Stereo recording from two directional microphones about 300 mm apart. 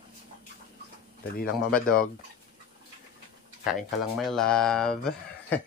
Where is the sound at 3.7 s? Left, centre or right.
Centre.